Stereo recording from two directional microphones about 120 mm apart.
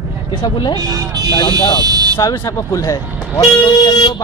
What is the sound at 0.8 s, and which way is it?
Buzzer, 30° right (ahead or behind).